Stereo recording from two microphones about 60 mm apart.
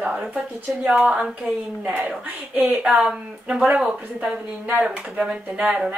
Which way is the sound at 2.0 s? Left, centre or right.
Right.